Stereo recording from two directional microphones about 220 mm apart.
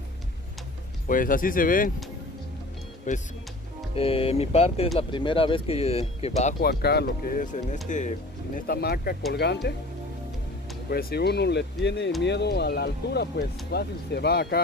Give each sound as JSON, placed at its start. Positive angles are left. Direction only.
{"t": 1.0, "sound": "speech", "side_deg": 40}
{"t": 3.1, "sound": "speech", "side_deg": 35}
{"t": 6.6, "sound": "speech", "side_deg": 45}
{"t": 10.9, "sound": "speech", "side_deg": 45}